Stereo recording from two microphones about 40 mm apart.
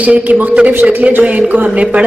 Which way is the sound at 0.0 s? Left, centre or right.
Right.